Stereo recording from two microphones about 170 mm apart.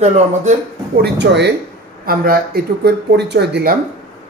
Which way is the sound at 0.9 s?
85° right.